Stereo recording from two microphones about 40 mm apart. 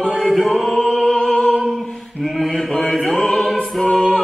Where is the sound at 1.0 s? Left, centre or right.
Centre.